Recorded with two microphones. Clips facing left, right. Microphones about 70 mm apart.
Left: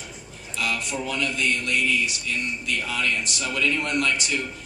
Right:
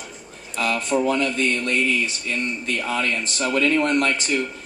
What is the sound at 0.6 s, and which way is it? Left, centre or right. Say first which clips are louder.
Speech: right 6 dB; right.